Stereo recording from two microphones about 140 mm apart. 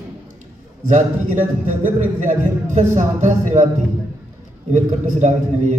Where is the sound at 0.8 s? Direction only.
65° right (ahead or behind).